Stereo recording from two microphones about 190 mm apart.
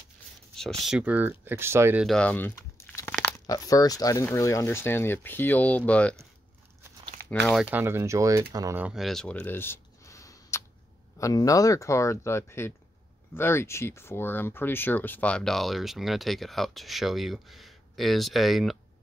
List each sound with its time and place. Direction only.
0.8 s speech: 5° right (ahead or behind)
2.0 s speech: 5° left (ahead or behind)
2.9 s a sound: 5° left (ahead or behind)
3.4 s speech: 20° left (ahead or behind)
7.4 s speech: 5° right (ahead or behind)